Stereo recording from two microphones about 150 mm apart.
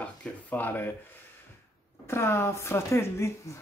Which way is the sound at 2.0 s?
15° left (ahead or behind).